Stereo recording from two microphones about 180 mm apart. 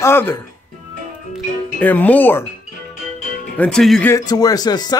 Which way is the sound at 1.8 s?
10° left (ahead or behind).